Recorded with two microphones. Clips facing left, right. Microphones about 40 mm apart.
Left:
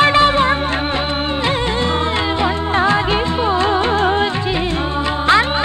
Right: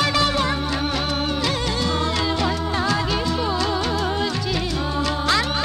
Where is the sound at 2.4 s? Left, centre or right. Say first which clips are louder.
Left 6 dB; left.